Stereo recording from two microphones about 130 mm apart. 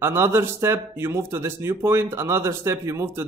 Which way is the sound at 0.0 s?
20° right (ahead or behind).